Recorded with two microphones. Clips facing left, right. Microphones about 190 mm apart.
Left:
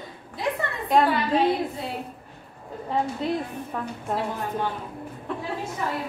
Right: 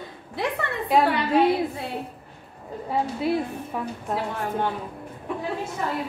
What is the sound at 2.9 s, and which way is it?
A woman's voice, 10° right (ahead or behind).